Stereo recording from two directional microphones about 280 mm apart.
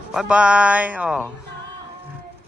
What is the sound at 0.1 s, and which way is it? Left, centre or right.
A man's voice, centre.